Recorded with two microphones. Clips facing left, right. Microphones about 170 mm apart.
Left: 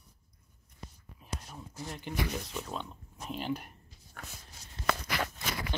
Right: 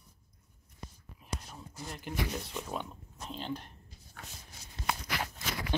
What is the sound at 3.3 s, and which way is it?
Speech, 5° left (ahead or behind).